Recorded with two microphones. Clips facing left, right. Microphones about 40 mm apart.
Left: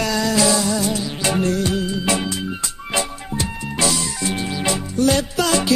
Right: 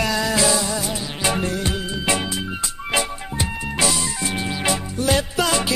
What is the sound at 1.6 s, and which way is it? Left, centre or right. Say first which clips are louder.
Music of bollywood: left 4 dB; right.